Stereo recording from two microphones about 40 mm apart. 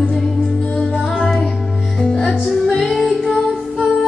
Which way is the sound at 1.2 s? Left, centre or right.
Centre.